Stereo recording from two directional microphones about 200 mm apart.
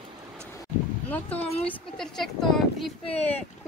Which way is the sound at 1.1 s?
10° left (ahead or behind).